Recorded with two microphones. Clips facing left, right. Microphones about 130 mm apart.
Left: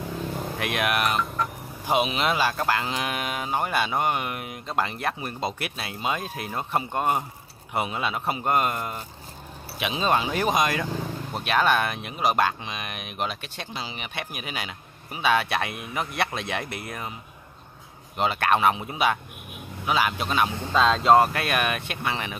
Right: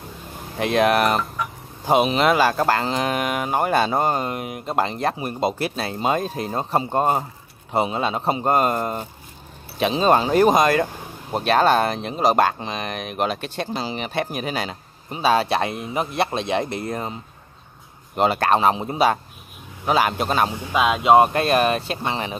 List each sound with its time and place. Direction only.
0.6 s speech: 30° right (ahead or behind)
18.1 s speech: 40° right (ahead or behind)
20.5 s speech: 15° right (ahead or behind)
21.3 s speech: 30° right (ahead or behind)